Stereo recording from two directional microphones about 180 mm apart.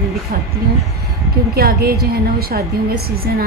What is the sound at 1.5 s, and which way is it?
A woman's voice, 60° right (ahead or behind).